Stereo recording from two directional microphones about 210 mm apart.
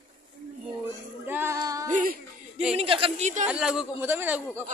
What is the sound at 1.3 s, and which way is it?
Child singing, 10° right (ahead or behind).